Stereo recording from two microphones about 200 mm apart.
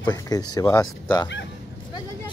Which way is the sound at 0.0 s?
20° left (ahead or behind).